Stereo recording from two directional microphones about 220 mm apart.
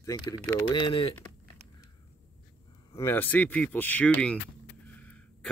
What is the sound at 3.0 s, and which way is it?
Speech, 10° left (ahead or behind).